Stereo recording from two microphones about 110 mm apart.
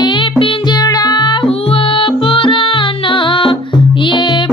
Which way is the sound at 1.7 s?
55° left (ahead or behind).